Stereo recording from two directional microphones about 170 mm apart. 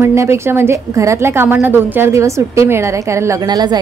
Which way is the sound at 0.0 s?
15° right (ahead or behind).